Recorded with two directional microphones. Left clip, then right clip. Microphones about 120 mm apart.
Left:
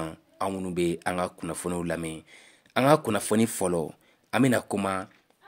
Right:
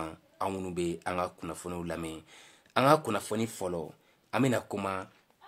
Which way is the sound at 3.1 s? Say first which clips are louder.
Left 7 dB; 60° left (ahead or behind).